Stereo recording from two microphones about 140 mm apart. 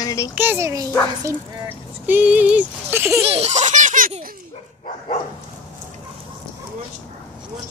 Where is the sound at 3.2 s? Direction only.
45° right (ahead or behind); by 4.1 s 70° right (ahead or behind).